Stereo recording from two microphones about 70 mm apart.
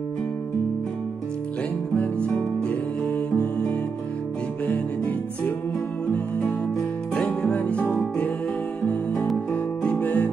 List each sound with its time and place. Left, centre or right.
2.0 s music: centre
7.2 s music: centre
9.5 s music: centre